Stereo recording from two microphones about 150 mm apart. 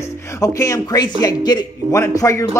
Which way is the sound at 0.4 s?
20° left (ahead or behind).